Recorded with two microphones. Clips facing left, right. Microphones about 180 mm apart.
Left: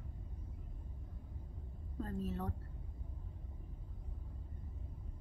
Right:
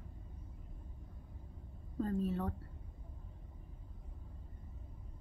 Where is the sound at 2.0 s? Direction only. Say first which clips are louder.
Right 5 dB; centre (ahead or behind).